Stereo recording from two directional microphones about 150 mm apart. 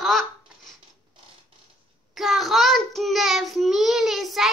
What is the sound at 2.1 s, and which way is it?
Child singing, centre (ahead or behind).